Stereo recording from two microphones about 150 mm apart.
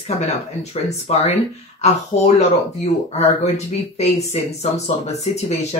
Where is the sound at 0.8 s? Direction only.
45° left (ahead or behind).